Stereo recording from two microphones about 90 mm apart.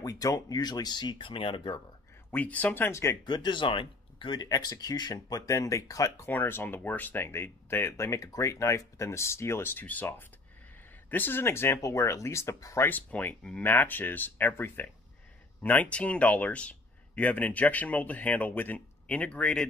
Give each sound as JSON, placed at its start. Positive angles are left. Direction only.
{"t": 0.0, "sound": "speech", "side_deg": 40}
{"t": 2.3, "sound": "speech", "side_deg": 15}
{"t": 3.3, "sound": "speech", "side_deg": 55}
{"t": 6.2, "sound": "speech", "side_deg": 25}
{"t": 12.8, "sound": "speech", "side_deg": 20}